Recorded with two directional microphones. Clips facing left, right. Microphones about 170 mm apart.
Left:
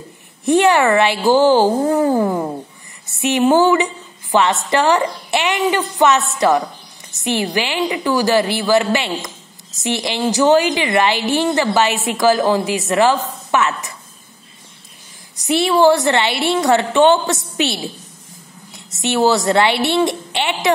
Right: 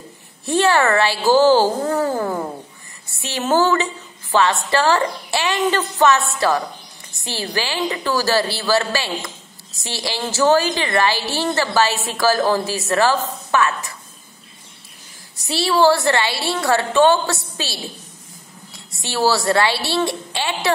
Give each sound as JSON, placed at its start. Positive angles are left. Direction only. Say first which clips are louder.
{"t": 0.5, "sound": "a woman's voice", "louder": "left 4 dB", "side_deg": 20}
{"t": 15.3, "sound": "a woman's voice", "louder": "left 4 dB", "side_deg": 20}
{"t": 18.9, "sound": "a woman's voice", "louder": "left 4 dB", "side_deg": 20}